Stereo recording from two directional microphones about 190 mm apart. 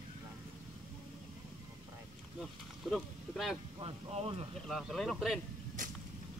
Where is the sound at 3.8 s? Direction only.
30° right (ahead or behind).